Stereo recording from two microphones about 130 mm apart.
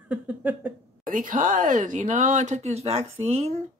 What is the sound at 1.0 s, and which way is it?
Speech, 90° right.